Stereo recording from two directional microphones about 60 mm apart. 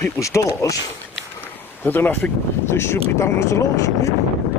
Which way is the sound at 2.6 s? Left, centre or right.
Left.